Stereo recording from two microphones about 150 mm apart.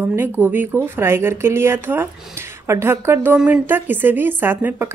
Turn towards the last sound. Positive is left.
turn(degrees=-15)  # may be behind; listen again after turning